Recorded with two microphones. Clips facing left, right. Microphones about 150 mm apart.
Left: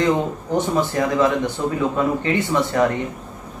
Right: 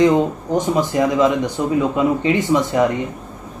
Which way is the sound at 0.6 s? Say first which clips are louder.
Right 3 dB; 15° right (ahead or behind).